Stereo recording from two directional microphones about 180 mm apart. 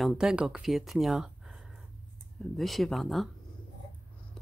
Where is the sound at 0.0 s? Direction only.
5° right (ahead or behind).